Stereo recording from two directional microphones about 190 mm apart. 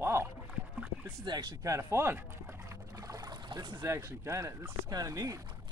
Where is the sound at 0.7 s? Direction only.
10° right (ahead or behind).